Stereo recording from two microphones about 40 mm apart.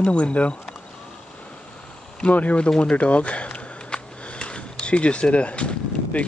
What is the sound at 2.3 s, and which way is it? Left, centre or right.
Speech, left.